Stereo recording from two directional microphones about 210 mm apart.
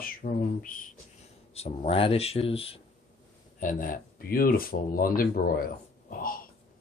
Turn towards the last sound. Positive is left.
turn(degrees=45)  # may be behind; listen again after turning